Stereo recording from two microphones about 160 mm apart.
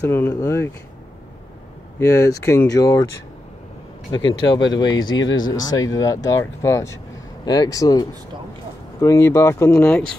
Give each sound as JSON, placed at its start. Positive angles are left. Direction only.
{"t": 0.0, "sound": "speech", "side_deg": 15}
{"t": 2.0, "sound": "speech", "side_deg": 20}
{"t": 4.1, "sound": "speech", "side_deg": 30}